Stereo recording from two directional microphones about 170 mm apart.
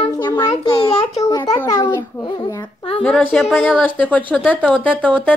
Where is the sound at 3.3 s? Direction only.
5° left (ahead or behind).